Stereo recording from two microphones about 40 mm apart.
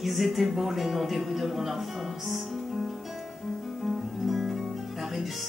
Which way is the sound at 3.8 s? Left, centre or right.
Centre.